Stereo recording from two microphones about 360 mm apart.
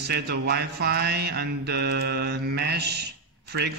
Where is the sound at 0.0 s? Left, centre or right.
Right.